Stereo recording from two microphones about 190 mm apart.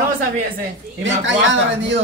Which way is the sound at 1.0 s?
75° right (ahead or behind).